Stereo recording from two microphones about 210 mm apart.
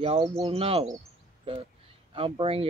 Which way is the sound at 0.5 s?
30° right (ahead or behind).